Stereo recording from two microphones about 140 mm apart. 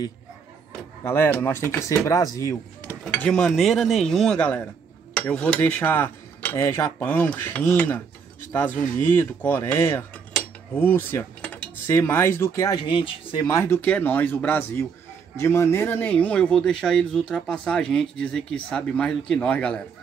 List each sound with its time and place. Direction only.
1.0 s cutlery: 15° left (ahead or behind)
2.0 s speech: 25° left (ahead or behind)
3.1 s speech: 5° left (ahead or behind)
5.1 s cutlery: 10° left (ahead or behind); by 13.5 s 40° left (ahead or behind)
13.5 s cutlery: 20° left (ahead or behind)